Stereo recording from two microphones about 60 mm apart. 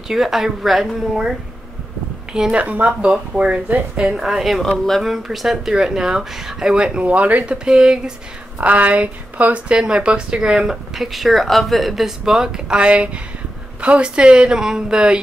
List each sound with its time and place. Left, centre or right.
0.1 s a woman's voice: centre
2.5 s speech: right
3.6 s speech: right
4.0 s a woman's voice: centre; by 7.5 s right
7.5 s speech: centre
8.5 s speech: right